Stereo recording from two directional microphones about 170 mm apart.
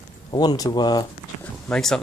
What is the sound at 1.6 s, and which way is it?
Speech, 5° left (ahead or behind).